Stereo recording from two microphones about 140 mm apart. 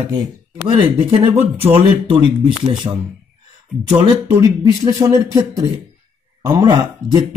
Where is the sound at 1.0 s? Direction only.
45° right (ahead or behind).